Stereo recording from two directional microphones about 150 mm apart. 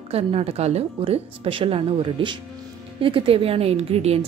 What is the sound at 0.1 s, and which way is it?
A woman's voice, 40° right (ahead or behind).